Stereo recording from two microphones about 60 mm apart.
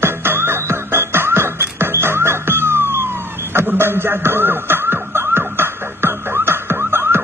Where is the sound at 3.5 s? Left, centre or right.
Right.